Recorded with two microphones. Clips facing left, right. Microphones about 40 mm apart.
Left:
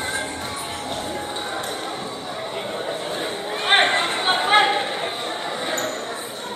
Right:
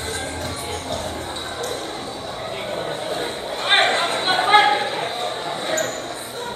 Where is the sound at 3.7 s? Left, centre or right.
Centre.